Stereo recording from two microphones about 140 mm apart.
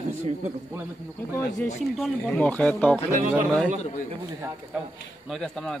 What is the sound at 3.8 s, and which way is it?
Speech, 60° left (ahead or behind).